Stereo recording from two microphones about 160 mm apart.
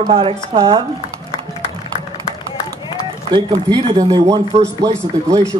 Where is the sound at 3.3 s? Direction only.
30° right (ahead or behind).